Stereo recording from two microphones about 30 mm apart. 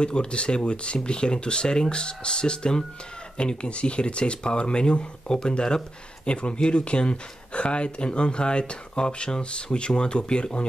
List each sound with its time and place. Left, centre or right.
0.0 s speech: left